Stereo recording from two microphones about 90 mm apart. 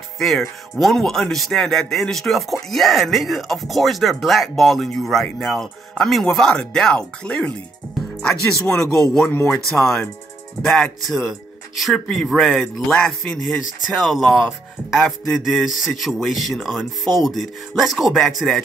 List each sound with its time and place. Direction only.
0.2 s a man's voice: centre (ahead or behind)